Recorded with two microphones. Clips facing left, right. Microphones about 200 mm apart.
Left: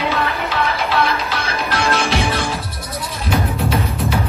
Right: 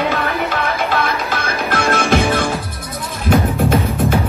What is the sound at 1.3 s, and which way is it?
Music, 50° right (ahead or behind).